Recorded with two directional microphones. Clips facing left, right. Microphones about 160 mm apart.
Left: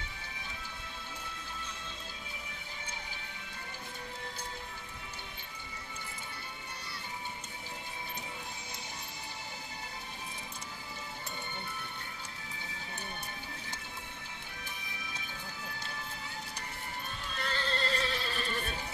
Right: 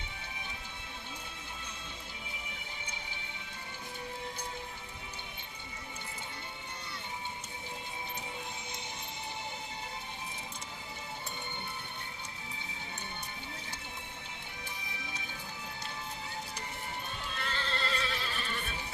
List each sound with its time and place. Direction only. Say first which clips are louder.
17.4 s neigh: left 3 dB; 40° left (ahead or behind)